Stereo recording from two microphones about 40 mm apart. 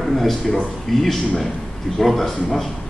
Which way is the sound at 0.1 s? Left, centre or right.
Centre.